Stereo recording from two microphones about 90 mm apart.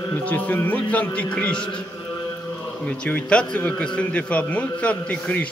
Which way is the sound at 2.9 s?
15° left (ahead or behind).